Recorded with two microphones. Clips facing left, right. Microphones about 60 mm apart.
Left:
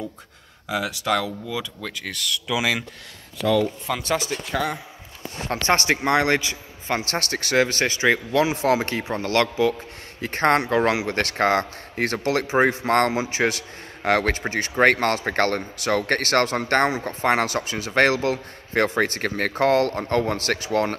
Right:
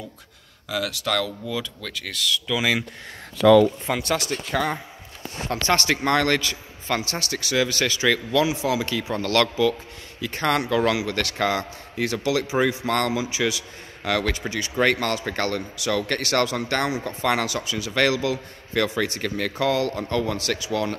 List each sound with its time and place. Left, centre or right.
0.7 s speech: left; by 2.8 s centre
4.1 s speech: centre
5.5 s speech: left
7.1 s a man's voice: left
8.5 s a man's voice: left
9.2 s speech: left
10.2 s a man's voice: left